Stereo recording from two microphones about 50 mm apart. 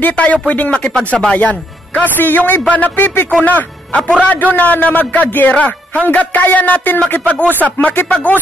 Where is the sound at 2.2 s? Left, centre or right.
Left.